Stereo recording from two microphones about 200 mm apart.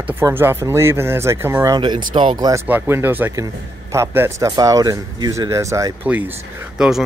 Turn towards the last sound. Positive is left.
turn(degrees=0)  # may be behind; listen again after turning